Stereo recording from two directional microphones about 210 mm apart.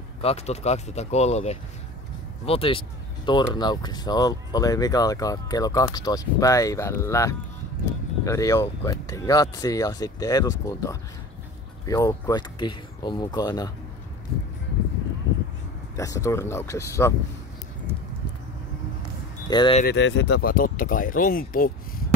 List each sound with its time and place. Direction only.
0.2 s speech: 30° left (ahead or behind)
16.0 s speech: 15° left (ahead or behind)
19.4 s speech: 20° left (ahead or behind)
19.8 s speech: 55° left (ahead or behind)
20.4 s speech: 40° left (ahead or behind)